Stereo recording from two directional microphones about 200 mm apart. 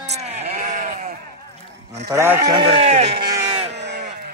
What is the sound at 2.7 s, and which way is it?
Speech, 30° right (ahead or behind).